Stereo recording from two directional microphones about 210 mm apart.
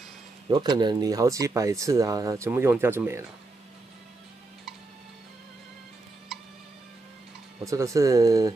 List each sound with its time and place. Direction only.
0.5 s speech: 20° right (ahead or behind)
7.6 s speech: 15° right (ahead or behind)